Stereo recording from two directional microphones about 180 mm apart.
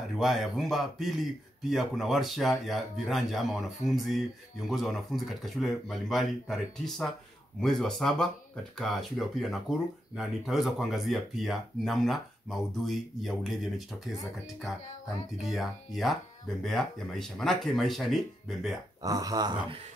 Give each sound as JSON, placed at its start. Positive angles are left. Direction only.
{"t": 0.1, "sound": "speech", "side_deg": 0}
{"t": 15.3, "sound": "speech", "side_deg": 0}
{"t": 19.0, "sound": "speech", "side_deg": -20}